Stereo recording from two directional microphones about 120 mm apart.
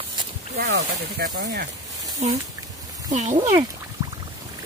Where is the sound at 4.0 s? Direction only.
35° right (ahead or behind).